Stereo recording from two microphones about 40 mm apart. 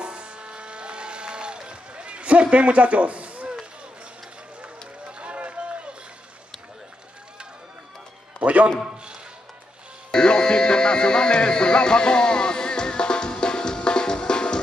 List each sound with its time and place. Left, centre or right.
0.0 s music: right
2.4 s a man's voice: right
5.2 s run: right
8.4 s music: right
8.9 s a sound: right
10.1 s music: left